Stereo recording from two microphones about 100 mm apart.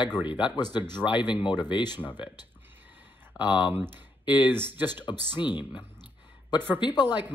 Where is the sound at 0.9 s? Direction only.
50° left (ahead or behind).